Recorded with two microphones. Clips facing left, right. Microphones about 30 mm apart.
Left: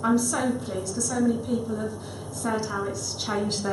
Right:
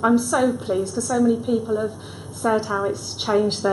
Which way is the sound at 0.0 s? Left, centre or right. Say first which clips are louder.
Right 6 dB; centre.